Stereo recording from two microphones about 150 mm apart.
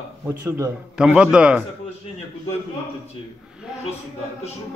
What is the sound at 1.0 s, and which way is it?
Speech, 5° right (ahead or behind).